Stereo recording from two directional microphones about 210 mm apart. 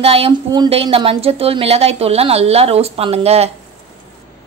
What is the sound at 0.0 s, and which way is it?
A woman's voice, 25° right (ahead or behind).